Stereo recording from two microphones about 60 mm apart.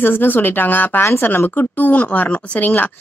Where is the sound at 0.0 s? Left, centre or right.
Left.